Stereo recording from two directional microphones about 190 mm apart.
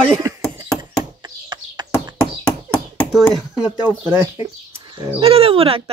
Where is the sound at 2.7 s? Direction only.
5° left (ahead or behind).